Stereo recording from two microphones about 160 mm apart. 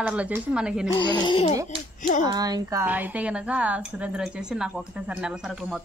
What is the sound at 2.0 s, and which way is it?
Speech, 55° left (ahead or behind).